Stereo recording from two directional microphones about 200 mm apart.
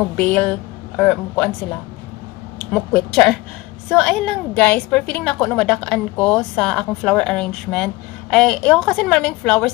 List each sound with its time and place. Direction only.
0.0 s a woman's voice: 5° left (ahead or behind)
2.7 s a woman's voice: centre (ahead or behind)